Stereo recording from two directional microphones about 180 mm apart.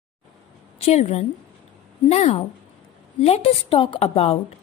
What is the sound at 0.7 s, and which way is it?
A woman's voice, 35° left (ahead or behind).